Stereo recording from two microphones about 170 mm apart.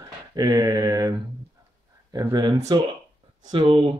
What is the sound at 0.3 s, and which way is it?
Speech, 25° right (ahead or behind).